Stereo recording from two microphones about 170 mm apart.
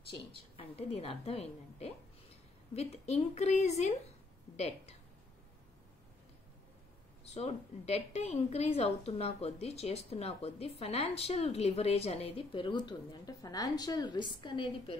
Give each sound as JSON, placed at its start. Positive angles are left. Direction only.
{"t": 0.6, "sound": "a woman's voice", "side_deg": 35}
{"t": 7.2, "sound": "a woman's voice", "side_deg": 40}